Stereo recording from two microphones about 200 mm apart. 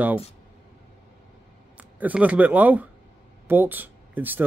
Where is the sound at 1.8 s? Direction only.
5° right (ahead or behind).